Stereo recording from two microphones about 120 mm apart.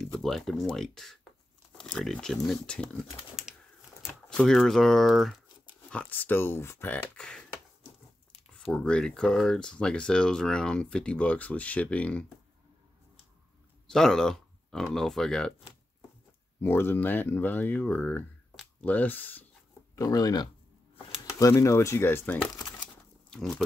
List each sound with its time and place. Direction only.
0.2 s speech: centre (ahead or behind)
4.3 s speech: 5° left (ahead or behind)
5.9 s speech: 10° left (ahead or behind)
8.7 s speech: 10° left (ahead or behind)
13.8 s speech: 5° left (ahead or behind)
16.6 s speech: 20° left (ahead or behind)
20.0 s speech: 30° left (ahead or behind); by 22.5 s 15° left (ahead or behind)
23.3 s speech: centre (ahead or behind)